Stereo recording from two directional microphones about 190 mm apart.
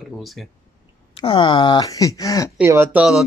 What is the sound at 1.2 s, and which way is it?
Speech, 25° left (ahead or behind).